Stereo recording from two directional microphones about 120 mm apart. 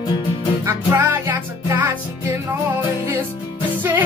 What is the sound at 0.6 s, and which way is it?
Music, 20° right (ahead or behind).